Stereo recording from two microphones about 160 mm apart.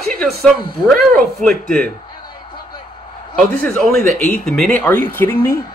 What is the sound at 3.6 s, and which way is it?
Speech, 5° left (ahead or behind).